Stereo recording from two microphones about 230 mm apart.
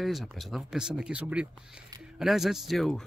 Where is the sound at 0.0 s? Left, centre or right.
Centre.